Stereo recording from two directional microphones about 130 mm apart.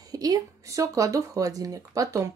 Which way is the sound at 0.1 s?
30° right (ahead or behind).